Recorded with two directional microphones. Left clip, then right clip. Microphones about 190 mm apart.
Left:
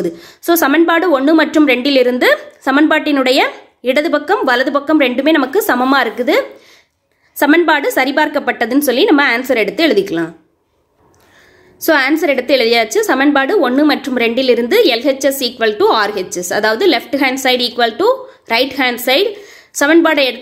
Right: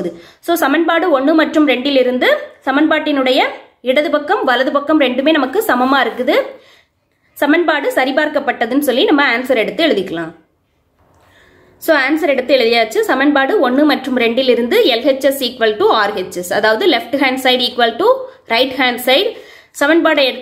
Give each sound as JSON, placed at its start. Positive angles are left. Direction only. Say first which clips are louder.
{"t": 0.0, "sound": "a woman's voice", "louder": "left 3 dB", "side_deg": 30}
{"t": 11.8, "sound": "a woman's voice", "louder": "left 1 dB", "side_deg": 25}